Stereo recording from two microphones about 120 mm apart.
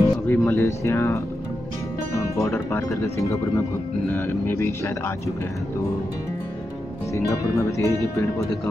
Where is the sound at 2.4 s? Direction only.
25° left (ahead or behind).